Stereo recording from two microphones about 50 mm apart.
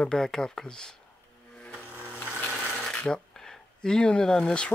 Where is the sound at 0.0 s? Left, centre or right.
Centre.